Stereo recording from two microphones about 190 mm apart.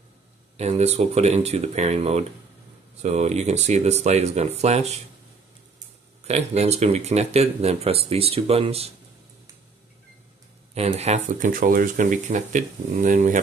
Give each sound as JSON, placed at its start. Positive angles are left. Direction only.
{"t": 0.6, "sound": "speech", "side_deg": -35}
{"t": 6.2, "sound": "speech", "side_deg": -35}
{"t": 10.7, "sound": "speech", "side_deg": -35}